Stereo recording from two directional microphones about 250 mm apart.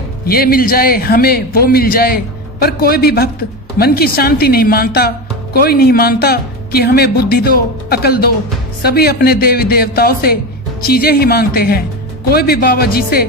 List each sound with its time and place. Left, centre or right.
0.2 s speech: left